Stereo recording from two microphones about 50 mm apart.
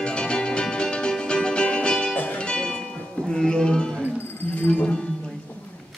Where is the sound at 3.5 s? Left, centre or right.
Centre.